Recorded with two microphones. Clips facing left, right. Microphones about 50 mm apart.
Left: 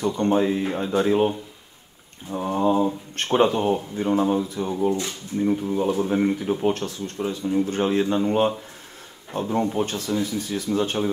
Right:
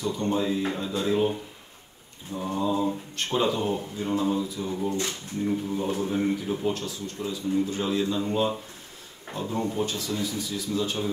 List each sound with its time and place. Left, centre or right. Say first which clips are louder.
0.0 s speech: left 6 dB; left
2.3 s speech: left 6 dB; left
5.7 s speech: left 5 dB; left
6.6 s speech: left 5 dB; left